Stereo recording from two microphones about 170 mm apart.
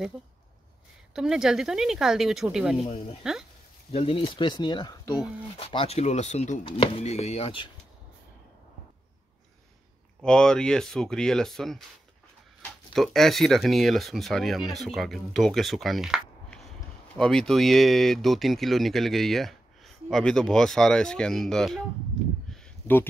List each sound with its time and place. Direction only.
1.1 s speech: 5° right (ahead or behind)
2.8 s speech: 35° left (ahead or behind)
5.6 s speech: 35° left (ahead or behind)
6.6 s speech: 30° left (ahead or behind)
10.2 s speech: 5° left (ahead or behind)
12.9 s speech: centre (ahead or behind)